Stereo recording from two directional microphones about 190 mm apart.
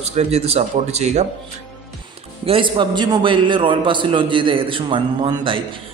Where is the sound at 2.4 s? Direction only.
25° right (ahead or behind).